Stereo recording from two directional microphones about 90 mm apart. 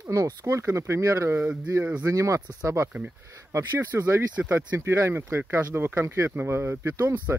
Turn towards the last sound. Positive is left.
turn(degrees=-30)  # may be behind; listen again after turning